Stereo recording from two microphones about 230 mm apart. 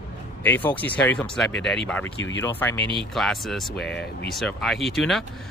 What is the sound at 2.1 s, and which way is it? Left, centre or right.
Speech, left.